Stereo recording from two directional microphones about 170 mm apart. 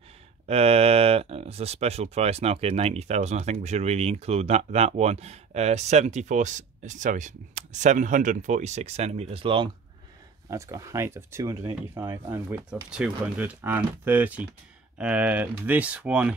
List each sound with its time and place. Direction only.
0.5 s speech: 35° right (ahead or behind)
10.5 s speech: 15° right (ahead or behind)